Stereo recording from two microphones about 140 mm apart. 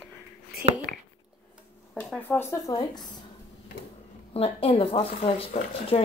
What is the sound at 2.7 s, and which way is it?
Speech, 30° left (ahead or behind).